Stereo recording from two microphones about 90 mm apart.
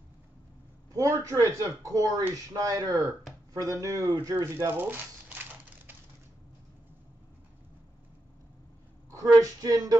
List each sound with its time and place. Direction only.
0.9 s speech: 35° right (ahead or behind)
9.1 s speech: 40° right (ahead or behind)